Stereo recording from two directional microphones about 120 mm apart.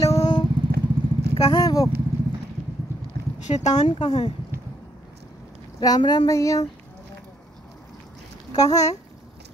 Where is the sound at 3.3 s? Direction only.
75° left (ahead or behind).